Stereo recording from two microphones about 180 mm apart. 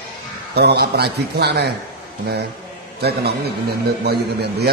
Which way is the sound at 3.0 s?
60° right (ahead or behind).